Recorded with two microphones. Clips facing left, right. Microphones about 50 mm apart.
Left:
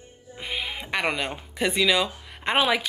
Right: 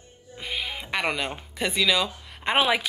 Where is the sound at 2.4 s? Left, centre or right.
Centre.